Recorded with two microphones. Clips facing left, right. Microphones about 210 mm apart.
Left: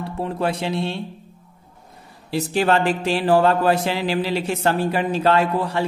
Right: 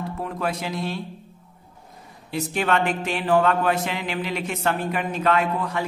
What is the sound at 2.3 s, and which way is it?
A man's voice, 35° left (ahead or behind).